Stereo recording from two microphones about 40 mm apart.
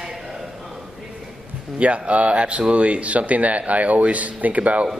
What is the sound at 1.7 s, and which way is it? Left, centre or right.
A man's voice, right.